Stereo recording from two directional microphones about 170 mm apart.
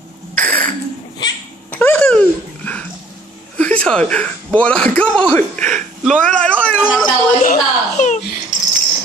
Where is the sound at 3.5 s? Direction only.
5° left (ahead or behind).